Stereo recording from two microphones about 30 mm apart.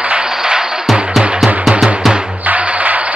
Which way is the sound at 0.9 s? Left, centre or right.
Centre.